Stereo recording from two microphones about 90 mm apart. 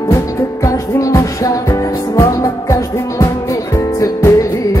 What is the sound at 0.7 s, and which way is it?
Music, 35° left (ahead or behind).